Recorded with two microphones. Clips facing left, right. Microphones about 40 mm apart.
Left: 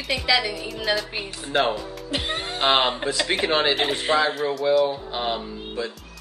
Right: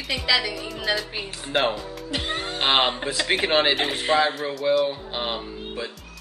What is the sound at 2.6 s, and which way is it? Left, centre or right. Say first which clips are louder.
Speech: left 1 dB; centre.